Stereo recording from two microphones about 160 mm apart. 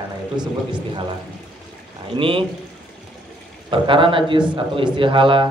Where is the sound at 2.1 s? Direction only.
35° right (ahead or behind).